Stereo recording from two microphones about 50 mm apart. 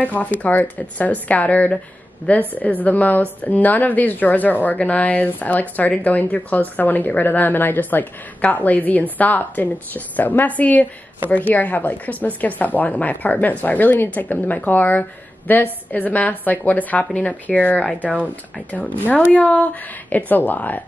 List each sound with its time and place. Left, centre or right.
0.0 s a woman's voice: left